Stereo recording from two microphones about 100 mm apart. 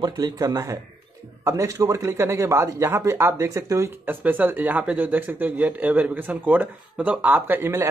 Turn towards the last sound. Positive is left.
turn(degrees=-25)  # may be behind; listen again after turning